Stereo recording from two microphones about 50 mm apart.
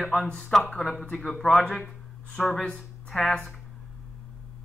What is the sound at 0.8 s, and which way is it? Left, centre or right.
Speech, left.